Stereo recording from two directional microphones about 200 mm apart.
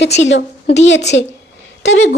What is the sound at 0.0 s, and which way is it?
Speech, 60° left (ahead or behind).